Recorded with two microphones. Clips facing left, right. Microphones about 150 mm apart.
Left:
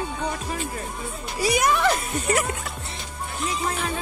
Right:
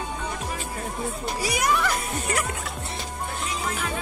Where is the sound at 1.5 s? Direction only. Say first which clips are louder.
Left 4 dB; 25° left (ahead or behind).